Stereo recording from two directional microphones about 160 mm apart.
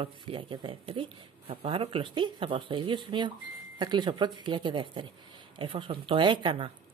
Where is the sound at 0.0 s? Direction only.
35° right (ahead or behind).